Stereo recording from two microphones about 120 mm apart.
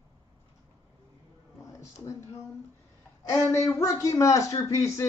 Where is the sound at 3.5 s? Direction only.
25° left (ahead or behind).